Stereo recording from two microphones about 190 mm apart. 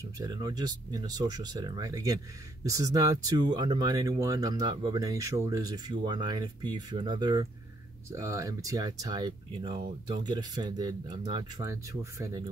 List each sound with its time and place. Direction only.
0.2 s speech: 20° right (ahead or behind)